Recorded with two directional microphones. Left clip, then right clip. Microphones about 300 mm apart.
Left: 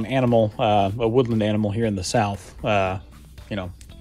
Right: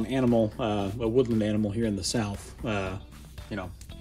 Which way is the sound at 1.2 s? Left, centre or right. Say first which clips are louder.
Left 5 dB; centre.